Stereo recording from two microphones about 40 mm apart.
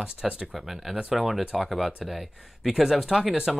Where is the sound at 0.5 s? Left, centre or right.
Centre.